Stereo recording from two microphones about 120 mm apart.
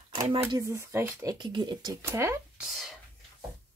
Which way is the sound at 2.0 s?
20° right (ahead or behind).